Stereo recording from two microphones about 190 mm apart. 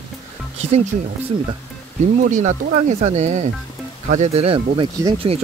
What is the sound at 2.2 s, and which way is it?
Speech, 40° right (ahead or behind).